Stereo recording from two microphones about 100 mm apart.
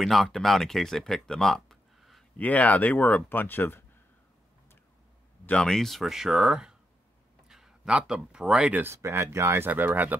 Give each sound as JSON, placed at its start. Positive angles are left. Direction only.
{"t": 0.0, "sound": "speech", "side_deg": 0}
{"t": 2.3, "sound": "speech", "side_deg": 15}
{"t": 5.5, "sound": "speech", "side_deg": 10}
{"t": 8.8, "sound": "speech", "side_deg": -25}